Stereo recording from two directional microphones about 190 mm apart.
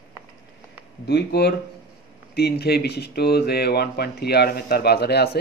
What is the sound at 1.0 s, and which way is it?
Speech, 60° left (ahead or behind).